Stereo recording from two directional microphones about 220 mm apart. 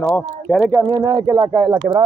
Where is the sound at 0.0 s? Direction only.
5° left (ahead or behind).